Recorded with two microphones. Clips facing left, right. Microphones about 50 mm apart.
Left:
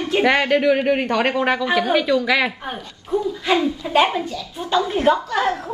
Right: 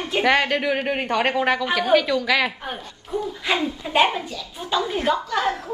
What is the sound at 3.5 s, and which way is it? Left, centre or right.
Speech, right.